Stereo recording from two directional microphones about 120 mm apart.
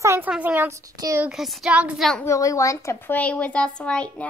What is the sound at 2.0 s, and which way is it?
Speech, 5° left (ahead or behind).